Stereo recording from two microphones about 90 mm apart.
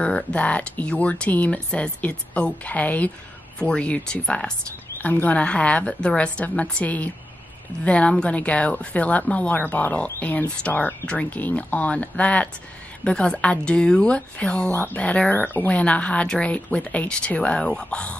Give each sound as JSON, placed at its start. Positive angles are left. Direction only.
{"t": 0.0, "sound": "speech", "side_deg": 15}